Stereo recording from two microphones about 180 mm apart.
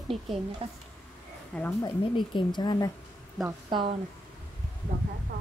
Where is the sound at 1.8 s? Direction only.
25° left (ahead or behind).